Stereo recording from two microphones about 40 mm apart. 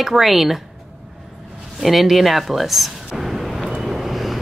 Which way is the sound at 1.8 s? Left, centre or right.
Centre.